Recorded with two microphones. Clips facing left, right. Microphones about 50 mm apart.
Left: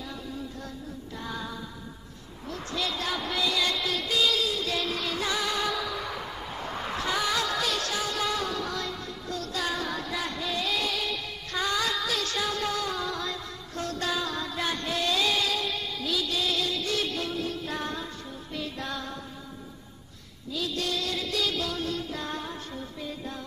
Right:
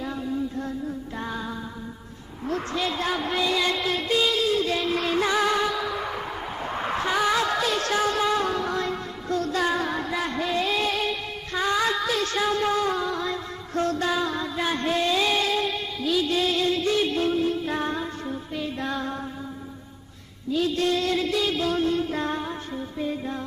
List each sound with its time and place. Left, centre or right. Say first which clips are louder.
2.4 s music: right 6 dB; right
5.6 s a sound: right 4 dB; centre
7.8 s music: right 7 dB; right
11.5 s music: right 5 dB; right
14.8 s music: right 5 dB; right
16.3 s music: right 6 dB; right
20.5 s a sound: right 7 dB; right
21.3 s music: right 5 dB; right
22.4 s music: right 5 dB; right